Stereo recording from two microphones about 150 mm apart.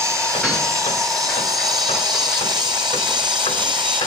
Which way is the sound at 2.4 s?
30° right (ahead or behind).